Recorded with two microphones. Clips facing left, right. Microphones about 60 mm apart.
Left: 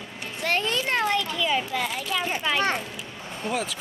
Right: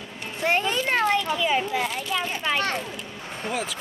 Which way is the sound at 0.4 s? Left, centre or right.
Right.